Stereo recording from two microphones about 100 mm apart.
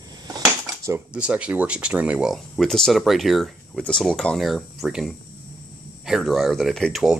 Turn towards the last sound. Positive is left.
turn(degrees=0)  # may be behind; listen again after turning